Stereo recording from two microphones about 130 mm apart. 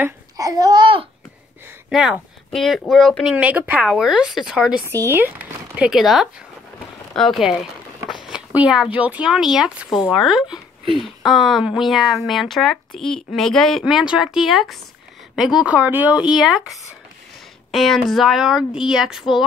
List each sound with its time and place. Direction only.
0.4 s babbling: 30° right (ahead or behind)
1.9 s speech: centre (ahead or behind)
3.3 s speech: 10° right (ahead or behind)
4.8 s speech: 20° right (ahead or behind); by 7.5 s centre (ahead or behind)
8.5 s speech: 5° right (ahead or behind)